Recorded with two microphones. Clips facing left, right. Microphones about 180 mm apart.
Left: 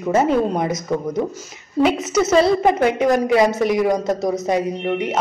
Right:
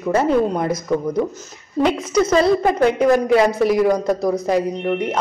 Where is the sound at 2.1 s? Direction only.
5° left (ahead or behind).